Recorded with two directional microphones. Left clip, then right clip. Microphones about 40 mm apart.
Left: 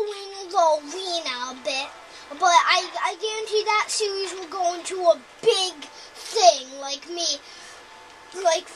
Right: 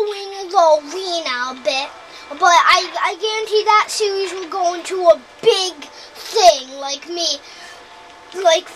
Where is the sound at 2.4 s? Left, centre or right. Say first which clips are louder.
Right 6 dB; right.